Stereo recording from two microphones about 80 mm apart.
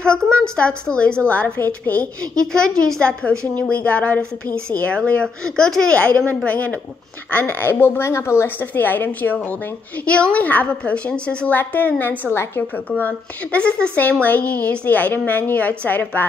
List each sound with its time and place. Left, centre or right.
0.0 s a woman's voice: centre
2.4 s a woman's voice: centre; by 12.8 s left
13.0 s a woman's voice: centre